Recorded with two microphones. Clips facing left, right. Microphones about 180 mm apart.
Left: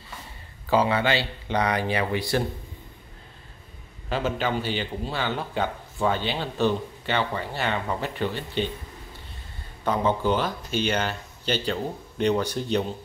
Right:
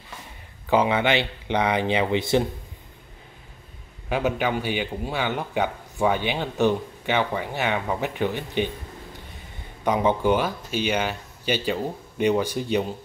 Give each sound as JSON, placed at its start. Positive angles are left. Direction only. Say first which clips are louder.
{"t": 0.7, "sound": "speech", "louder": "right 1 dB", "side_deg": -20}
{"t": 4.1, "sound": "a man's voice", "louder": "right 2 dB", "side_deg": -15}
{"t": 9.8, "sound": "a man's voice", "louder": "right 3 dB", "side_deg": -15}